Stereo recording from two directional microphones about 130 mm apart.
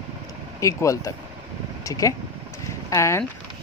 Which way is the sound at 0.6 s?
25° left (ahead or behind).